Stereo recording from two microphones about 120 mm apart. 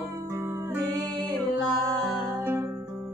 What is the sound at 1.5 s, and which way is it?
Music, centre (ahead or behind).